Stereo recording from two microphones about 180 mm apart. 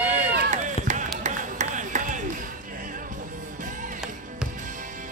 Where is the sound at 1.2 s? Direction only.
45° right (ahead or behind).